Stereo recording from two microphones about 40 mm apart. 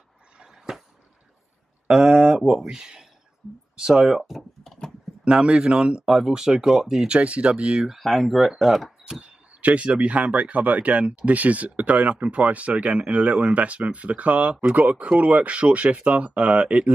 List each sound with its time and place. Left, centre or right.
0.4 s a sound: centre
1.9 s speech: centre
5.2 s speech: right
7.1 s speech: right; by 8.0 s centre
8.0 s speech: centre
8.8 s speech: centre
9.2 s a sound: right
9.9 s speech: right